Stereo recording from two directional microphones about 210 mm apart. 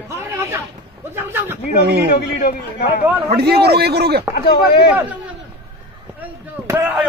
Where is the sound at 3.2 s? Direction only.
50° right (ahead or behind).